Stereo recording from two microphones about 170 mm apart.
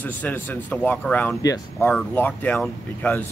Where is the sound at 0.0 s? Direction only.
10° left (ahead or behind).